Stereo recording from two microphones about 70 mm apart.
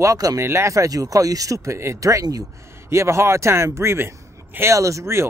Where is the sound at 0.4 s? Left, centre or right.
Right.